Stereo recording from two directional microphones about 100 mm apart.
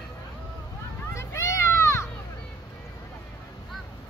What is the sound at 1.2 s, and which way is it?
Children playing, 30° left (ahead or behind).